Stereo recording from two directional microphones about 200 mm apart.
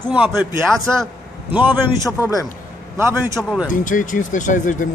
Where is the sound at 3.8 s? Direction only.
40° left (ahead or behind).